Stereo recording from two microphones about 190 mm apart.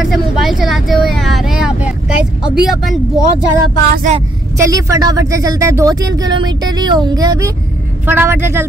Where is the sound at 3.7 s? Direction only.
45° right (ahead or behind).